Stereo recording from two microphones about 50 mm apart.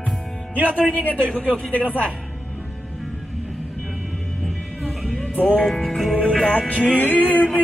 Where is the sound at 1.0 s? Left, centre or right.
Left.